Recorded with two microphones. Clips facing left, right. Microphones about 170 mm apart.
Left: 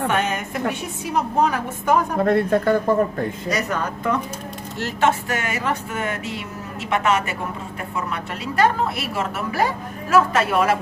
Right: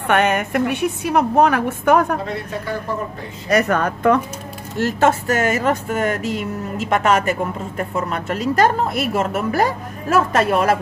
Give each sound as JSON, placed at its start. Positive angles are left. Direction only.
{"t": 0.1, "sound": "a woman's voice", "side_deg": -65}
{"t": 2.2, "sound": "speech", "side_deg": 55}
{"t": 3.4, "sound": "a woman's voice", "side_deg": -60}
{"t": 4.7, "sound": "a woman's voice", "side_deg": -45}